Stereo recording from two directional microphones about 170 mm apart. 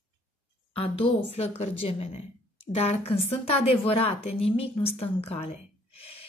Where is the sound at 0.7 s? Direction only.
35° left (ahead or behind).